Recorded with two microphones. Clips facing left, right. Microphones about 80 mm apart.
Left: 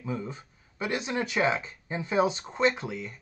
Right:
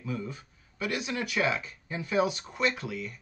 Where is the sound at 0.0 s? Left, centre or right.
Left.